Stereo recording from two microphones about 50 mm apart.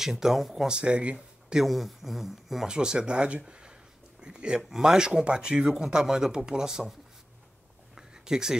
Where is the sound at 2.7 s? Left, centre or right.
Centre.